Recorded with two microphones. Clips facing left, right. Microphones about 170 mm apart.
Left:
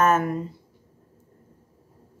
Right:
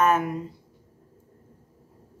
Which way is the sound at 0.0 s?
10° right (ahead or behind).